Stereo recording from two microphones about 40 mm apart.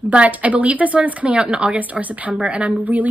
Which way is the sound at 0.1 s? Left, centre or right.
Right.